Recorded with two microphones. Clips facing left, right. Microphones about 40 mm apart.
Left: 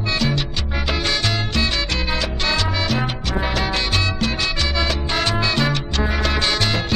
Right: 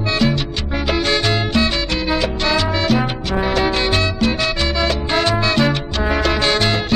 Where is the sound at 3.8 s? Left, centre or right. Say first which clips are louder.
Right 4 dB; centre.